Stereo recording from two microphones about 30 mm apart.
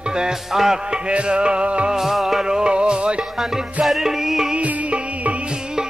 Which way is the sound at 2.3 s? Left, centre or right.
Right.